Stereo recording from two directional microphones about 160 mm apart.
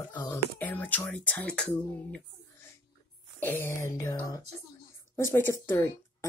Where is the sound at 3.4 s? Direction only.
15° left (ahead or behind).